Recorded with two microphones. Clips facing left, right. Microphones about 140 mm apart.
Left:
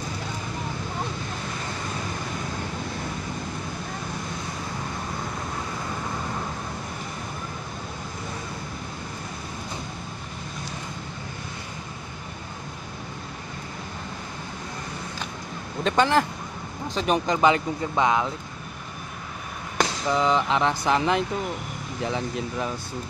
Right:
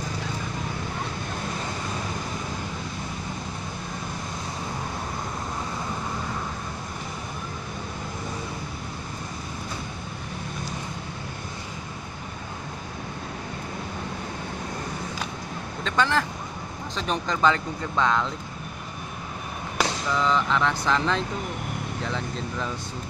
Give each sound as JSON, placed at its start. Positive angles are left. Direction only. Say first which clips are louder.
{"t": 15.8, "sound": "speech", "louder": "left 4 dB", "side_deg": 20}
{"t": 20.2, "sound": "speech", "louder": "left 2 dB", "side_deg": 20}